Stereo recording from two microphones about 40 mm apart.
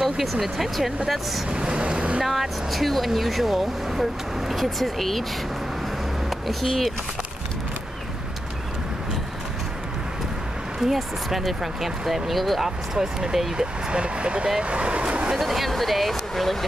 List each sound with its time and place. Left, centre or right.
0.0 s speech: centre
1.5 s vehicle: right
2.2 s speech: centre
6.4 s speech: centre
10.8 s speech: centre
12.9 s speech: centre; by 15.3 s right
15.3 s speech: centre